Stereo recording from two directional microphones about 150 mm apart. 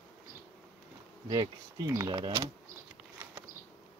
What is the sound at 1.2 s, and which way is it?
Speech, 30° right (ahead or behind).